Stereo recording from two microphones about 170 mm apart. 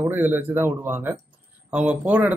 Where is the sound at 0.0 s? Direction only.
10° right (ahead or behind).